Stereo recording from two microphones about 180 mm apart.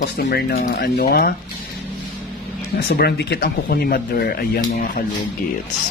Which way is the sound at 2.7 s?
60° left (ahead or behind).